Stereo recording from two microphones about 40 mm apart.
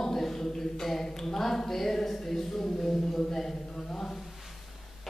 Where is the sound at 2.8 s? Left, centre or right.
Centre.